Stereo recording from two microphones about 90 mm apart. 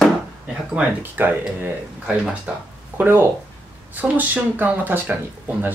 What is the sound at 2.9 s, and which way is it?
Speech, 25° right (ahead or behind).